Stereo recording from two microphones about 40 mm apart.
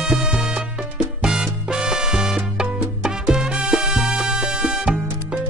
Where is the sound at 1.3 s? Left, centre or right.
Centre.